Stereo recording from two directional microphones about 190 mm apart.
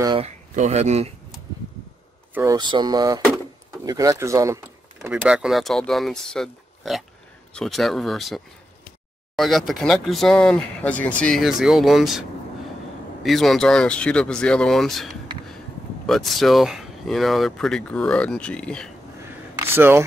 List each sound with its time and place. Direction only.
0.0 s speech: 25° right (ahead or behind)
0.6 s speech: 35° right (ahead or behind)
2.3 s speech: 20° right (ahead or behind); by 8.4 s centre (ahead or behind)
9.4 s speech: centre (ahead or behind)
19.6 s speech: 10° right (ahead or behind)